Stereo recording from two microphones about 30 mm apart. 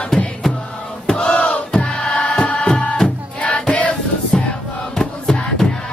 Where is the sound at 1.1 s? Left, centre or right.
Left.